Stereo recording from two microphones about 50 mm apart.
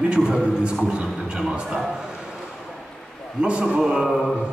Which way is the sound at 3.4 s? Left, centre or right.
Right.